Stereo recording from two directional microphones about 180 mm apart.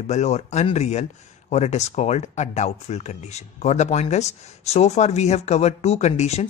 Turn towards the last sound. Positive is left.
turn(degrees=35)  # may be behind; listen again after turning